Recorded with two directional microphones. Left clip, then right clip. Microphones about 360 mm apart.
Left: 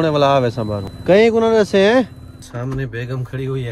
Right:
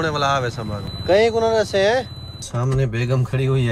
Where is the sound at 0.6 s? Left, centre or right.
Left.